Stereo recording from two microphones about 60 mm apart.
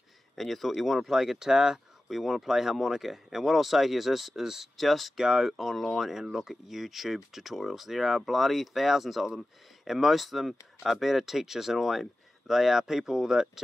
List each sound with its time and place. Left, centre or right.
0.4 s speech: centre